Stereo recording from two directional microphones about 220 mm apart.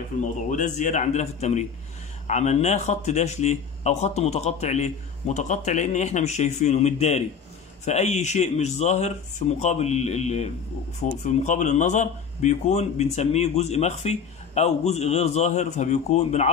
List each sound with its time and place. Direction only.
0.5 s a man's voice: 35° left (ahead or behind)